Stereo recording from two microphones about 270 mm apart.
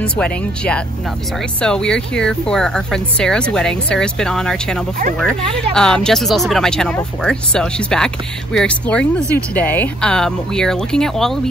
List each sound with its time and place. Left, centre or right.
0.0 s speech: centre